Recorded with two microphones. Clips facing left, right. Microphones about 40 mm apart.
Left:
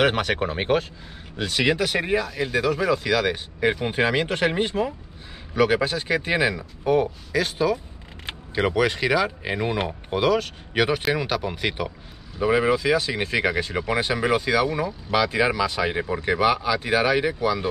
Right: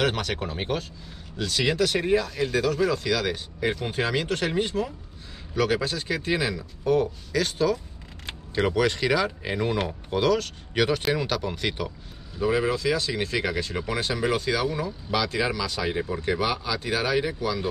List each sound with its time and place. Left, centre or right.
0.0 s speech: left